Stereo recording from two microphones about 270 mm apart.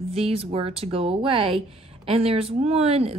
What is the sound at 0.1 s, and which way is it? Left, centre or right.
Speech, right.